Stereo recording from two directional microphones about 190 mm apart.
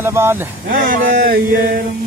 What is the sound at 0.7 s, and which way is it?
Speech, 50° right (ahead or behind).